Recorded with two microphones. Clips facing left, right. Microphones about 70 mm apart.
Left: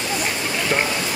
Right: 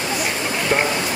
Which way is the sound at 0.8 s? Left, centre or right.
Right.